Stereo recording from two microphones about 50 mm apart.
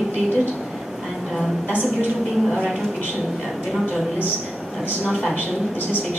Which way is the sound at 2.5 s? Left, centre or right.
Centre.